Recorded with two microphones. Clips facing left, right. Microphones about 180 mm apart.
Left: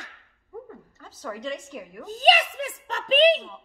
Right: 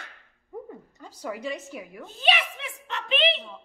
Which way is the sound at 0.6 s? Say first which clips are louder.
Right 2 dB; 15° right (ahead or behind).